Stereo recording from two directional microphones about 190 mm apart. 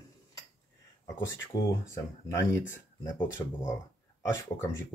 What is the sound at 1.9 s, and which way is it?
Speech, 15° left (ahead or behind).